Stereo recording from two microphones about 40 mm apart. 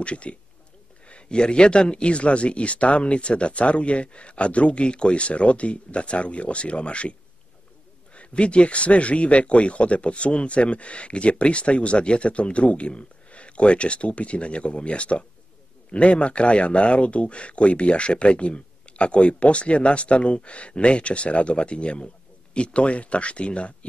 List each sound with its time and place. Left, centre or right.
0.0 s speech: left